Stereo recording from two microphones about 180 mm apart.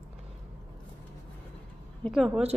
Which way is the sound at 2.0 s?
Centre (ahead or behind).